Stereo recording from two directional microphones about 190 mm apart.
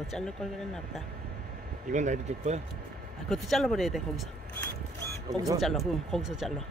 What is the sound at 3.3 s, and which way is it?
Speech, centre (ahead or behind).